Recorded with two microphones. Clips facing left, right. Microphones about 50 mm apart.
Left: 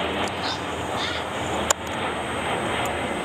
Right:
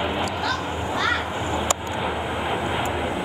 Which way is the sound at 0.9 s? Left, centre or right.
Right.